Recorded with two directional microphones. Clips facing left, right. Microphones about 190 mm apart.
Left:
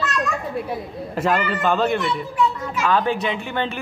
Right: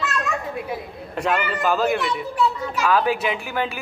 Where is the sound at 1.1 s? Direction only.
Centre (ahead or behind).